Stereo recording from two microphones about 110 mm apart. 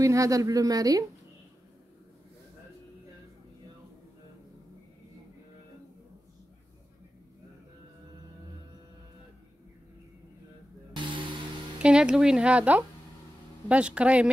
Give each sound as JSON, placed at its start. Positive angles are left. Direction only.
{"t": 0.0, "sound": "a woman's voice", "side_deg": -30}
{"t": 11.0, "sound": "vehicle", "side_deg": -50}
{"t": 11.8, "sound": "speech", "side_deg": -10}